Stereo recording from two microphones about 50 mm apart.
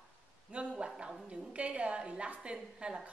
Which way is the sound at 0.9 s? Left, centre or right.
Centre.